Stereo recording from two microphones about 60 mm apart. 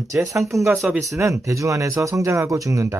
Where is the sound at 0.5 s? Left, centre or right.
Right.